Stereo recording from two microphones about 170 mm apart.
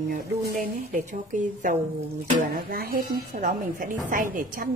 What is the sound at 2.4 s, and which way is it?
A woman's voice, 60° right (ahead or behind).